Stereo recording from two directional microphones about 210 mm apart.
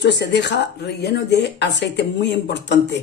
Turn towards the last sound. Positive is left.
turn(degrees=55)  # may be behind; listen again after turning